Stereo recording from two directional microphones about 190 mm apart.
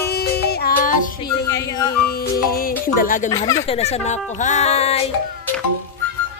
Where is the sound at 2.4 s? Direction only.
50° left (ahead or behind).